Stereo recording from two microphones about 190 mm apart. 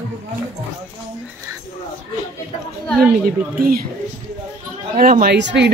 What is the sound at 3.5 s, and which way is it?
Speech, 50° right (ahead or behind).